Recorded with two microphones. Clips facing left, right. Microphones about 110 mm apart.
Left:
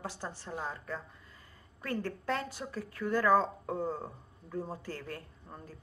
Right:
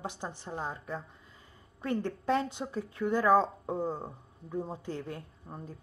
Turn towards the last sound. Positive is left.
turn(degrees=-20)  # may be behind; listen again after turning